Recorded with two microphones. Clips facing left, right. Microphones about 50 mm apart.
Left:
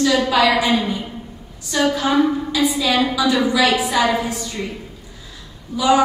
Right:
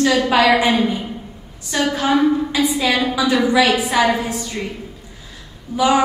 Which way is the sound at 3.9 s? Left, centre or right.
Centre.